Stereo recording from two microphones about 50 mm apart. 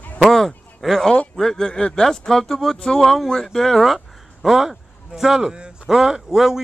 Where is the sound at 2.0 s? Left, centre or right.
Centre.